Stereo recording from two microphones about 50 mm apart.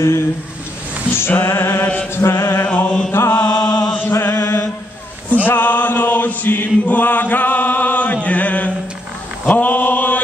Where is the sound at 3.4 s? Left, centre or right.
Left.